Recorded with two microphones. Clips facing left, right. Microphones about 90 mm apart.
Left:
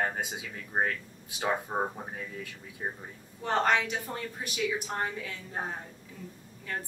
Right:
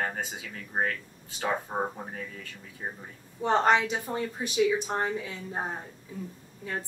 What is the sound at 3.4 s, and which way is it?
A woman's voice, 20° right (ahead or behind).